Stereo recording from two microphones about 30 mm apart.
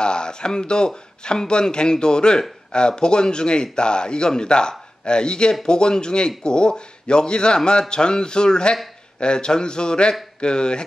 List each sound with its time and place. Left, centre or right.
0.0 s speech: left